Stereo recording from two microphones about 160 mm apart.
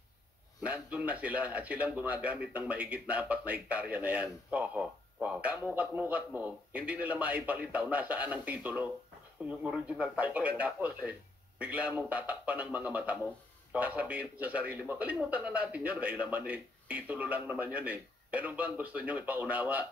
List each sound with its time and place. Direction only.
0.6 s a man's voice: 10° right (ahead or behind)